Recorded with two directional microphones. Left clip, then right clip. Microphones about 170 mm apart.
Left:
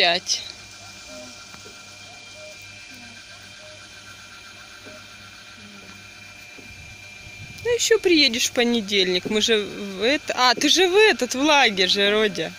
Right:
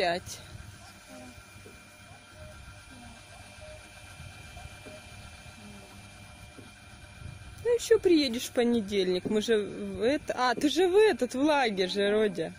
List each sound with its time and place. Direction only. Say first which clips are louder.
7.6 s speech: left 5 dB; 5° right (ahead or behind)